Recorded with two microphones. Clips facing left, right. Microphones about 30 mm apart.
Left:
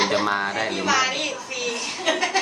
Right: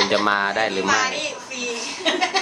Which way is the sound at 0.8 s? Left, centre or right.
Centre.